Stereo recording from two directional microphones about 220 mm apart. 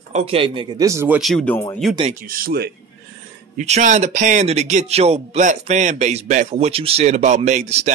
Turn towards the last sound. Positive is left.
turn(degrees=-30)  # may be behind; listen again after turning